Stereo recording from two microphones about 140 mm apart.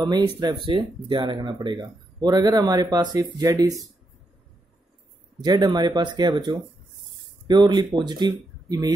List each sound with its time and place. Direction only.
0.0 s speech: 30° right (ahead or behind)
5.4 s speech: 30° right (ahead or behind)